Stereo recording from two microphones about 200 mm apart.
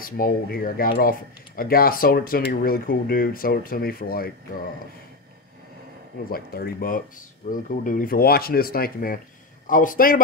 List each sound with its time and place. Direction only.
0.0 s speech: 45° left (ahead or behind)
6.3 s speech: 50° left (ahead or behind)